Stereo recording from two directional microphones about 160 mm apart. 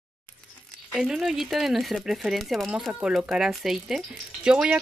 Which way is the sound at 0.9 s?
Centre (ahead or behind).